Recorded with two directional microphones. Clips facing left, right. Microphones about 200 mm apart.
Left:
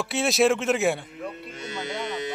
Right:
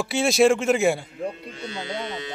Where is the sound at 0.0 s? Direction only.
Centre (ahead or behind).